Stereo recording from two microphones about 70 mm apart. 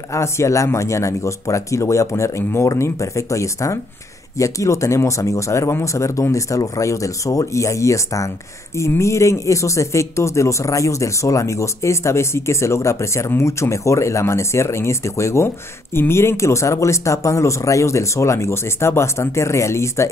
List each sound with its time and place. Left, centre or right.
0.1 s speech: left